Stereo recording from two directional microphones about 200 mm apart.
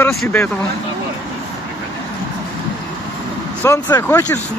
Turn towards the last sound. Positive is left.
turn(degrees=15)  # may be behind; listen again after turning